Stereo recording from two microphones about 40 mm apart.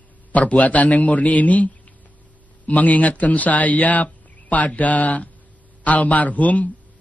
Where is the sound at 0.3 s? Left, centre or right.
Left.